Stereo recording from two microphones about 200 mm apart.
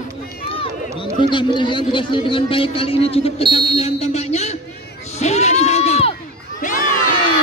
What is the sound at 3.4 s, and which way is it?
Speech, 25° right (ahead or behind).